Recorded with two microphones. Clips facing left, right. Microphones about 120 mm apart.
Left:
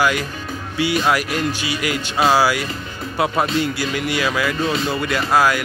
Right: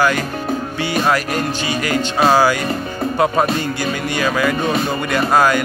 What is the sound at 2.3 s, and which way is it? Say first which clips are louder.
Speech: right 3 dB; 5° left (ahead or behind).